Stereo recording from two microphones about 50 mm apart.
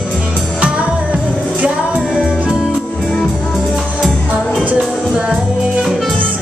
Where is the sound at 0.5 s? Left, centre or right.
Right.